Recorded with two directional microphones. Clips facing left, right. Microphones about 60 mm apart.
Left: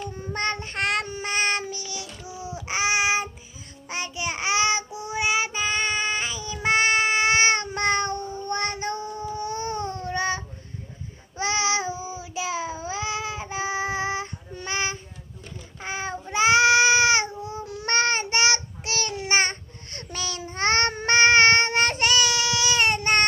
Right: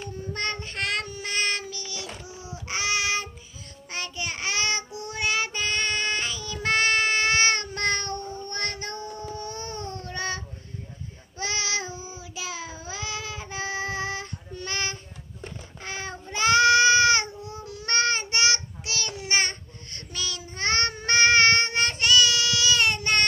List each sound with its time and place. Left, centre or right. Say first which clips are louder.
0.1 s child singing: left 2 dB; left
2.2 s a sound: left 4 dB; left
3.9 s child singing: left 3 dB; centre
9.3 s baby cry: left 6 dB; left
11.3 s child singing: left 5 dB; left
15.8 s a sound: left 5 dB; left